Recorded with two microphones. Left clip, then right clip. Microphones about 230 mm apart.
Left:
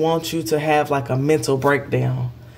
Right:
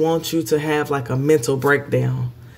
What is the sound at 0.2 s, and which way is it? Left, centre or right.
Speech, centre.